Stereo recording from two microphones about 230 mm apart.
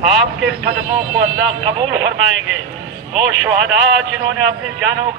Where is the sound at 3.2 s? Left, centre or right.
Right.